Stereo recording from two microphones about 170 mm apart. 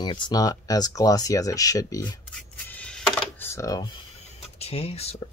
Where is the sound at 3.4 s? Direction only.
20° left (ahead or behind).